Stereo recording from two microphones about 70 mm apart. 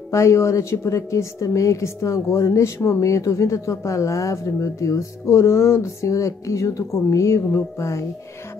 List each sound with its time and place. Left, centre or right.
0.1 s a woman's voice: left